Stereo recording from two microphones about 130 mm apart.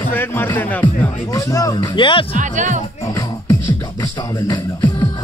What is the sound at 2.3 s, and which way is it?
Speech, 75° right (ahead or behind).